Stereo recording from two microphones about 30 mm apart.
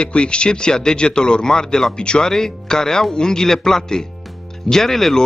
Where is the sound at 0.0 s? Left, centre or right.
Left.